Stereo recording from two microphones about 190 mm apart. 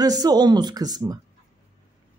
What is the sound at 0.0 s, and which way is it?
Speech, 20° right (ahead or behind).